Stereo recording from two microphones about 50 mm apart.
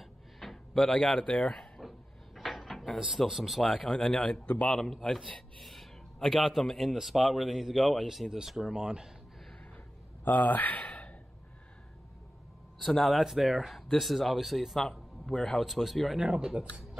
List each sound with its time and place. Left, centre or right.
0.0 s a sound: centre
1.8 s drawer open or close: centre
3.3 s a man's voice: centre
3.7 s speech: centre
4.7 s speech: centre
5.6 s a sound: centre
6.2 s a man's voice: centre
8.0 s a man's voice: centre
10.2 s a sound: left
12.9 s a man's voice: centre